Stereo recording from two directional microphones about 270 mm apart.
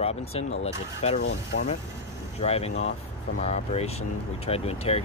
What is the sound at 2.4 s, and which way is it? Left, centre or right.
Speech, left.